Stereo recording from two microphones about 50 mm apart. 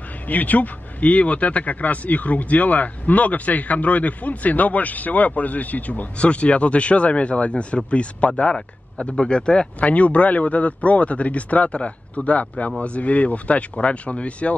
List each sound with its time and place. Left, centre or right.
0.3 s speech: left